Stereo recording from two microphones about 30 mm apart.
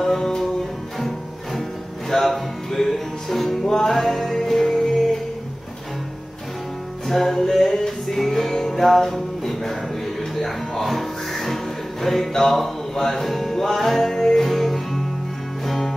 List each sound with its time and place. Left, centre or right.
0.0 s music: centre
0.9 s music: centre
2.0 s speech: centre
2.8 s music: centre
7.1 s music: centre
9.5 s a sound: centre
10.4 s music: centre
14.1 s music: centre
14.4 s music: centre